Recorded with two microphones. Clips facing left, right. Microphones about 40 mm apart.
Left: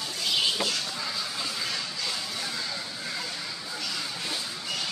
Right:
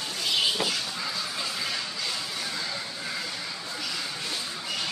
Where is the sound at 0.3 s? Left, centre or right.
Centre.